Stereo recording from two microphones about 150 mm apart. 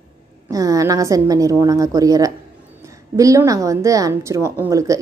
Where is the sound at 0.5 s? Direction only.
25° right (ahead or behind).